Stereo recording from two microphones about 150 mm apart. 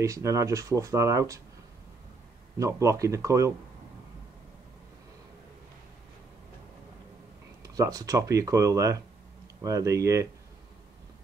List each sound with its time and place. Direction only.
0.0 s speech: 20° right (ahead or behind)
2.6 s speech: 20° right (ahead or behind)
7.6 s speech: 25° right (ahead or behind)